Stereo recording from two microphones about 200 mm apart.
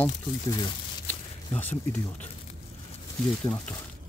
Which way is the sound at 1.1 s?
10° left (ahead or behind).